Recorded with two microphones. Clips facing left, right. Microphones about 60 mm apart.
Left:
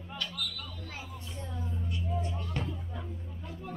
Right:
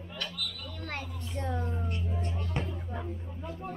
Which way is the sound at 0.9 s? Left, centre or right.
Right.